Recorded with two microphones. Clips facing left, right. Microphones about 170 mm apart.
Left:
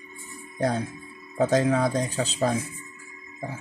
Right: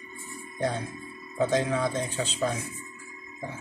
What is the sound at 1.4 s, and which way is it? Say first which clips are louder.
Speech: left 4 dB; 45° left (ahead or behind).